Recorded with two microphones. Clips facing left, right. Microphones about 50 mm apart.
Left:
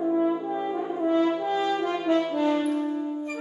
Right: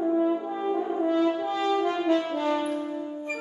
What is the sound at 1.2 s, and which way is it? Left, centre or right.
French horn, left.